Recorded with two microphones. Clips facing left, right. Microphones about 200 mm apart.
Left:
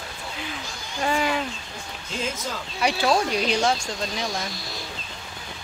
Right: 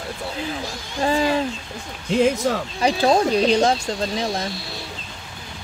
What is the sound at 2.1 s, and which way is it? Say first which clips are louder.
Speech: right 12 dB; 65° right (ahead or behind).